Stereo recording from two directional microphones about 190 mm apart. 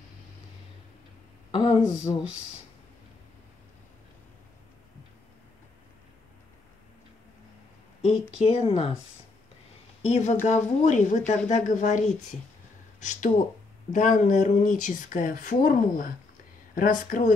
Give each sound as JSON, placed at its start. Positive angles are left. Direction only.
{"t": 1.5, "sound": "speech", "side_deg": 25}
{"t": 8.5, "sound": "speech", "side_deg": 30}
{"t": 10.0, "sound": "speech", "side_deg": 35}